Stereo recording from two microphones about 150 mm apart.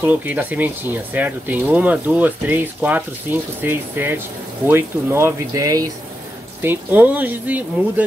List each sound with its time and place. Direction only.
0.0 s speech: 10° right (ahead or behind)
6.6 s speech: 15° right (ahead or behind)